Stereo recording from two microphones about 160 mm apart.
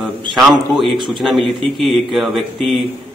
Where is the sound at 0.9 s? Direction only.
30° right (ahead or behind).